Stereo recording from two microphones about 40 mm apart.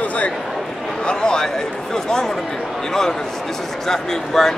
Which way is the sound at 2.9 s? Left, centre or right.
Centre.